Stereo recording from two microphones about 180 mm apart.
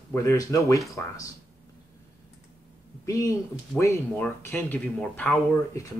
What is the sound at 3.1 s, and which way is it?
Speech, 15° left (ahead or behind).